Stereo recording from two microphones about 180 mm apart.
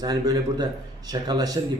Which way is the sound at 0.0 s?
20° right (ahead or behind).